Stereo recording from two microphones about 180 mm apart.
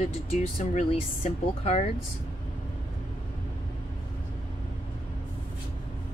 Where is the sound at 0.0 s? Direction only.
35° left (ahead or behind).